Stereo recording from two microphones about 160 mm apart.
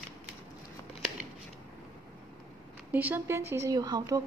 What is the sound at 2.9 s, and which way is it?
Speech, 10° right (ahead or behind).